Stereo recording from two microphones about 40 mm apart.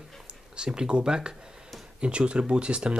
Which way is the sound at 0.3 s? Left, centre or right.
Right.